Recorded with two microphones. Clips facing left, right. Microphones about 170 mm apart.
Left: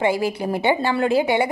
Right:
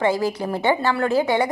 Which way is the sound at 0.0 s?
10° left (ahead or behind).